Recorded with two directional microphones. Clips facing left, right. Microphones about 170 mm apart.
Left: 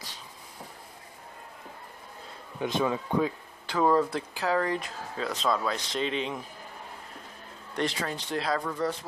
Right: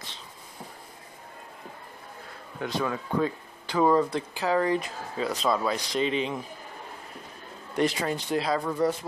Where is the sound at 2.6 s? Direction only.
20° left (ahead or behind).